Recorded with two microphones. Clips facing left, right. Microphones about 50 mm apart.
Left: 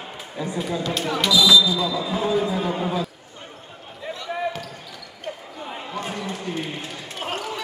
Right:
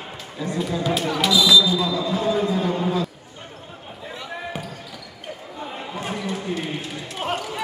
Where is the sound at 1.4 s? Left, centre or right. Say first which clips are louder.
Even; centre.